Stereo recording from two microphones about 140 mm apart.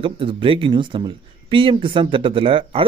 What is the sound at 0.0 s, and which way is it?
Speech, 40° right (ahead or behind).